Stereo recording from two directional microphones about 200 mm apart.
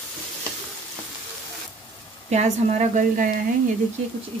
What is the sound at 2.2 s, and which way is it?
Speech, 35° right (ahead or behind).